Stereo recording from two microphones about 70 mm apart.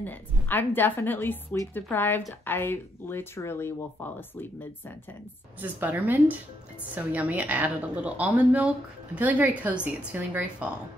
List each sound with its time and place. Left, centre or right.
0.0 s a woman's voice: left
5.6 s a woman's voice: right